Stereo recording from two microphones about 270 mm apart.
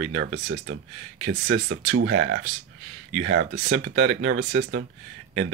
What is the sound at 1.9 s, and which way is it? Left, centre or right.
Speech, right.